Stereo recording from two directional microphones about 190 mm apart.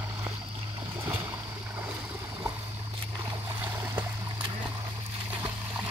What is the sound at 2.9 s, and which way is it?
Boat, 25° right (ahead or behind).